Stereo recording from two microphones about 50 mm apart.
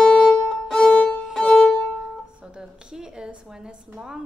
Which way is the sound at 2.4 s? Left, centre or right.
Centre.